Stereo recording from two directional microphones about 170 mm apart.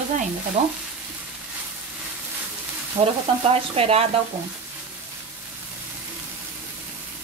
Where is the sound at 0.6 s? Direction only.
40° right (ahead or behind).